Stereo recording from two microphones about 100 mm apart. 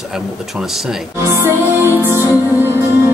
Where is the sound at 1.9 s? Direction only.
20° right (ahead or behind).